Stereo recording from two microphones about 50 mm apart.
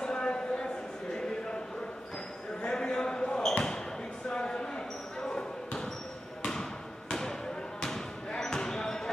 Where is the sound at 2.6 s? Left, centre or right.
Centre.